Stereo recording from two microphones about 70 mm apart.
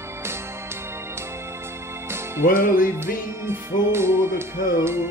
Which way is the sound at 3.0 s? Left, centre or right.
Right.